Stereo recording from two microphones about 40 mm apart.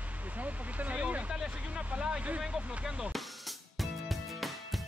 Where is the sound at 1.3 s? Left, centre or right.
Right.